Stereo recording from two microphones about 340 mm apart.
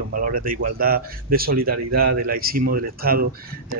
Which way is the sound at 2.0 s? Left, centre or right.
Right.